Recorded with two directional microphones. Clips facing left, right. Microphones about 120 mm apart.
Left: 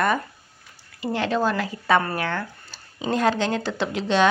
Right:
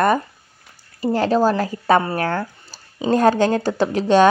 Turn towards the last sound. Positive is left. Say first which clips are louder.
# right 6 dB
turn(degrees=-45)  # may be behind; listen again after turning